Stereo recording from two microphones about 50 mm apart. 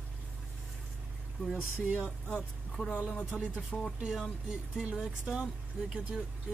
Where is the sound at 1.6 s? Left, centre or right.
Right.